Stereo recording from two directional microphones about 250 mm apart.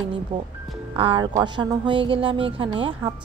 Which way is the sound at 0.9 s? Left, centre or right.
Right.